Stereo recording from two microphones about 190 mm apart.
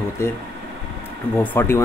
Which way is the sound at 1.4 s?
10° left (ahead or behind).